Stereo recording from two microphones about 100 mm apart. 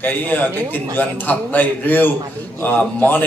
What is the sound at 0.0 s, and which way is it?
A man's voice, 15° left (ahead or behind).